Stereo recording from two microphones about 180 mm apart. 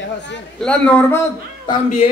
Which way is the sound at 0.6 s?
5° left (ahead or behind).